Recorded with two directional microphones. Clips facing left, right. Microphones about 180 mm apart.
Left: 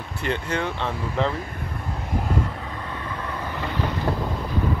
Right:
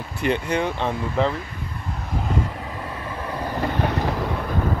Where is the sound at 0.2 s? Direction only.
15° right (ahead or behind).